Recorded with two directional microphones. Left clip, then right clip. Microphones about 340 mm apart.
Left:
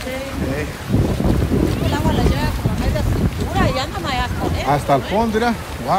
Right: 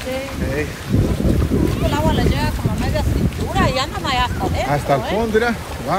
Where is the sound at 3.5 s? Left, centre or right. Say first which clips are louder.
Right 1 dB; right.